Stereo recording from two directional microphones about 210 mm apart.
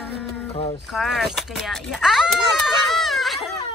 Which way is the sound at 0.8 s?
Centre (ahead or behind).